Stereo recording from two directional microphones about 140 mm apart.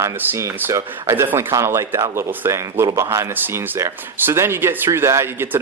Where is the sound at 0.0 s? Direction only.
15° right (ahead or behind).